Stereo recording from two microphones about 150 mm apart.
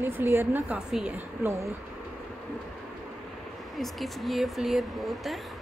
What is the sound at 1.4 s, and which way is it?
Speech, 20° right (ahead or behind).